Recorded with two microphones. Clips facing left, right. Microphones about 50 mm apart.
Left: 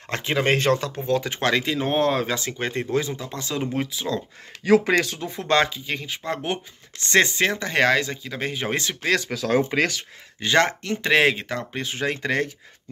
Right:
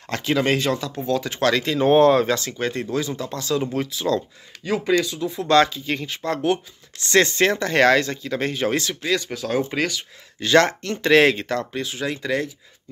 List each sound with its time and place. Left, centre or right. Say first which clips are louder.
0.1 s speech: right 1 dB; left
0.6 s speech: left 2 dB; left
1.6 s speech: right 7 dB; centre
2.3 s speech: right 2 dB; centre
4.6 s speech: left 5 dB; left
5.2 s speech: right 4 dB; left
5.9 s speech: right 3 dB; centre
6.4 s speech: right 6 dB; left
7.3 s speech: right 3 dB; centre
8.6 s speech: right 3 dB; left
9.1 s speech: left 1 dB; left
9.7 s speech: left 1 dB; left
10.4 s speech: right 3 dB; centre
11.7 s speech: even; left